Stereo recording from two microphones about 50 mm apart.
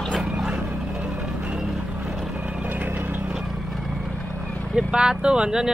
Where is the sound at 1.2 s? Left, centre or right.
Right.